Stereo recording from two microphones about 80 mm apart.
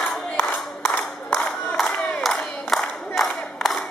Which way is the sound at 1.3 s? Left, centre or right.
Centre.